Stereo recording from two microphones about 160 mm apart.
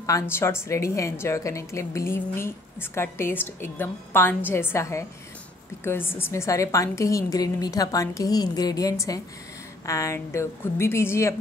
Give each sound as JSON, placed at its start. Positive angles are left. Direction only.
{"t": 0.0, "sound": "a woman's voice", "side_deg": 15}